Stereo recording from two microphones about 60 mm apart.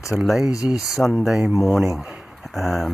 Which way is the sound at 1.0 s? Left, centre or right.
Centre.